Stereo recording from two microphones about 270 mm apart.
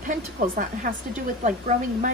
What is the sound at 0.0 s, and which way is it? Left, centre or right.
Speech, right.